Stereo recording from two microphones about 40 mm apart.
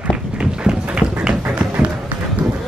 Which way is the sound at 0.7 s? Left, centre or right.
Centre.